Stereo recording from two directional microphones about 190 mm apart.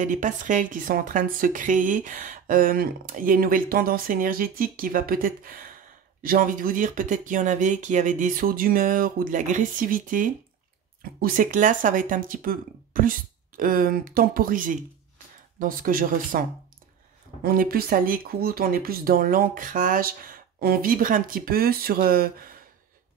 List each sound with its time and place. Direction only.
0.0 s a woman's voice: 45° right (ahead or behind)